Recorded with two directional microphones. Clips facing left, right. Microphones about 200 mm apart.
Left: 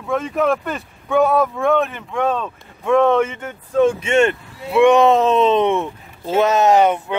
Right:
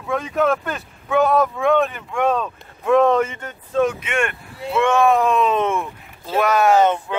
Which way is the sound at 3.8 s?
30° left (ahead or behind).